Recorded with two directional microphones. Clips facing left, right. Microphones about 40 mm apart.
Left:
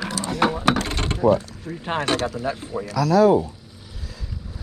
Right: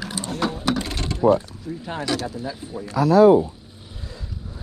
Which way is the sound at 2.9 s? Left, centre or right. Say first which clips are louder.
Right 2 dB; right.